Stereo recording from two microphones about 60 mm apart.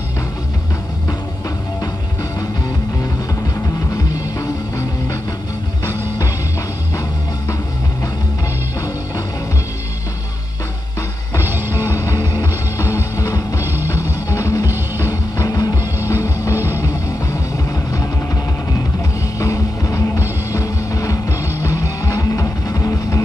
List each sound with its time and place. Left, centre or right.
11.4 s music: right
11.9 s music: left
13.7 s music: right
14.3 s music: left
15.0 s music: left
16.1 s music: left
19.4 s music: left